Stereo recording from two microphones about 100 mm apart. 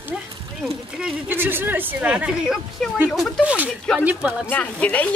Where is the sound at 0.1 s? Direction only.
10° right (ahead or behind).